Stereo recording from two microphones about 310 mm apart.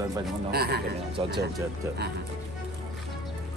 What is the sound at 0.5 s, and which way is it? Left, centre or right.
Speech, right.